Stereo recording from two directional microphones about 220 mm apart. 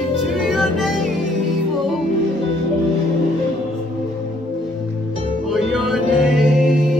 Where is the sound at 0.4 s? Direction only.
Centre (ahead or behind).